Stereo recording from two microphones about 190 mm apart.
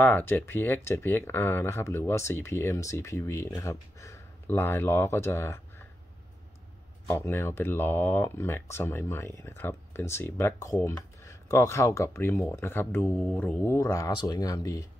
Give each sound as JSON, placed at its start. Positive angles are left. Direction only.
{"t": 0.0, "sound": "speech", "side_deg": 10}
{"t": 7.1, "sound": "speech", "side_deg": 10}